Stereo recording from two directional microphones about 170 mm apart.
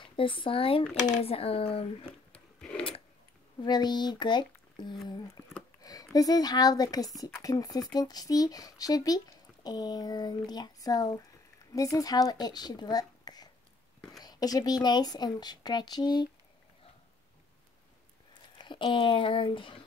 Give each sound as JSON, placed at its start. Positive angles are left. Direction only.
{"t": 0.0, "sound": "speech", "side_deg": 30}
{"t": 3.6, "sound": "speech", "side_deg": 25}
{"t": 5.8, "sound": "a sound", "side_deg": 20}
{"t": 6.1, "sound": "speech", "side_deg": 20}
{"t": 18.3, "sound": "speech", "side_deg": 30}